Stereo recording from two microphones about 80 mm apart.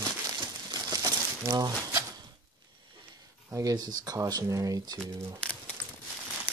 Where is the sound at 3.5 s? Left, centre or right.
Right.